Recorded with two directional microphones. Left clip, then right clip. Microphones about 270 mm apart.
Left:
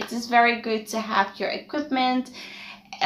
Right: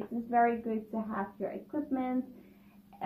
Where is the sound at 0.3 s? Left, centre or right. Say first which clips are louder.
Left 9 dB; centre.